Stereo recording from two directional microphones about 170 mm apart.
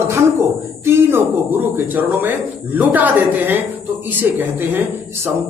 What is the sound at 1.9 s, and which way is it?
Speech, 10° right (ahead or behind).